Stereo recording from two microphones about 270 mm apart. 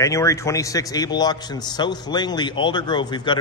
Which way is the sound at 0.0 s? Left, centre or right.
Centre.